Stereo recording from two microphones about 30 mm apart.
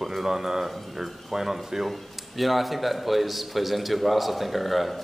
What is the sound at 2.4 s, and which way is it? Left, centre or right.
Speech, centre.